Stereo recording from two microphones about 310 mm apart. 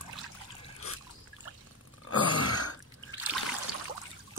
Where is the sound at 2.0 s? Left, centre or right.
Left.